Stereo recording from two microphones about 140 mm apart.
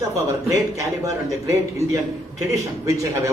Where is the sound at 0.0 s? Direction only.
20° right (ahead or behind).